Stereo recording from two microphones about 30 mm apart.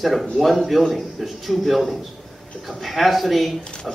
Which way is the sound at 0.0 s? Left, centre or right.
Centre.